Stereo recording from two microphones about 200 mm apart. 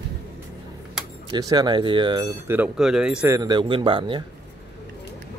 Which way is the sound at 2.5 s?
5° right (ahead or behind).